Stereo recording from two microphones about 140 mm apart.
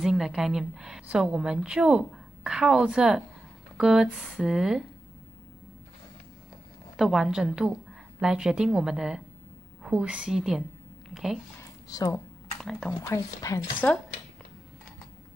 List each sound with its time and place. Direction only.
0.0 s a woman's voice: 5° right (ahead or behind)
7.0 s a woman's voice: 5° right (ahead or behind)
11.9 s speech: 25° left (ahead or behind)
12.5 s speech: 5° left (ahead or behind)
13.0 s speech: 25° left (ahead or behind)